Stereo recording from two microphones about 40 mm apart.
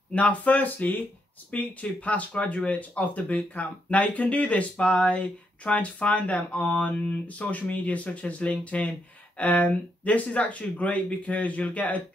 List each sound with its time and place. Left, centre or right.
0.1 s speech: left